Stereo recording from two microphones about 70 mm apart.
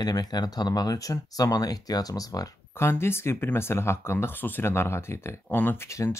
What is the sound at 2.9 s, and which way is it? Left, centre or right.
Speech, left.